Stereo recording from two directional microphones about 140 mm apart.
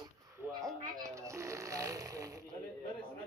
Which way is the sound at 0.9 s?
20° right (ahead or behind).